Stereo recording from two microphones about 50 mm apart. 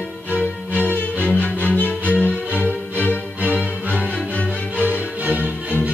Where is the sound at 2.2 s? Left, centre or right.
Left.